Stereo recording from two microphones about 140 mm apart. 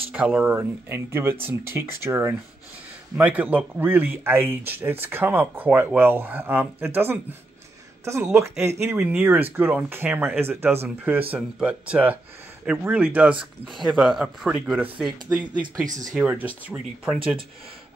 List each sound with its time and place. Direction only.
0.1 s speech: 5° right (ahead or behind)
8.9 s speech: 5° right (ahead or behind)
13.7 s speech: centre (ahead or behind)
15.8 s speech: 25° right (ahead or behind)
16.2 s speech: 10° right (ahead or behind)